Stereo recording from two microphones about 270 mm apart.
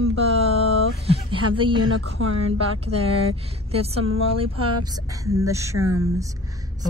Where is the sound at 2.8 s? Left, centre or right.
Right.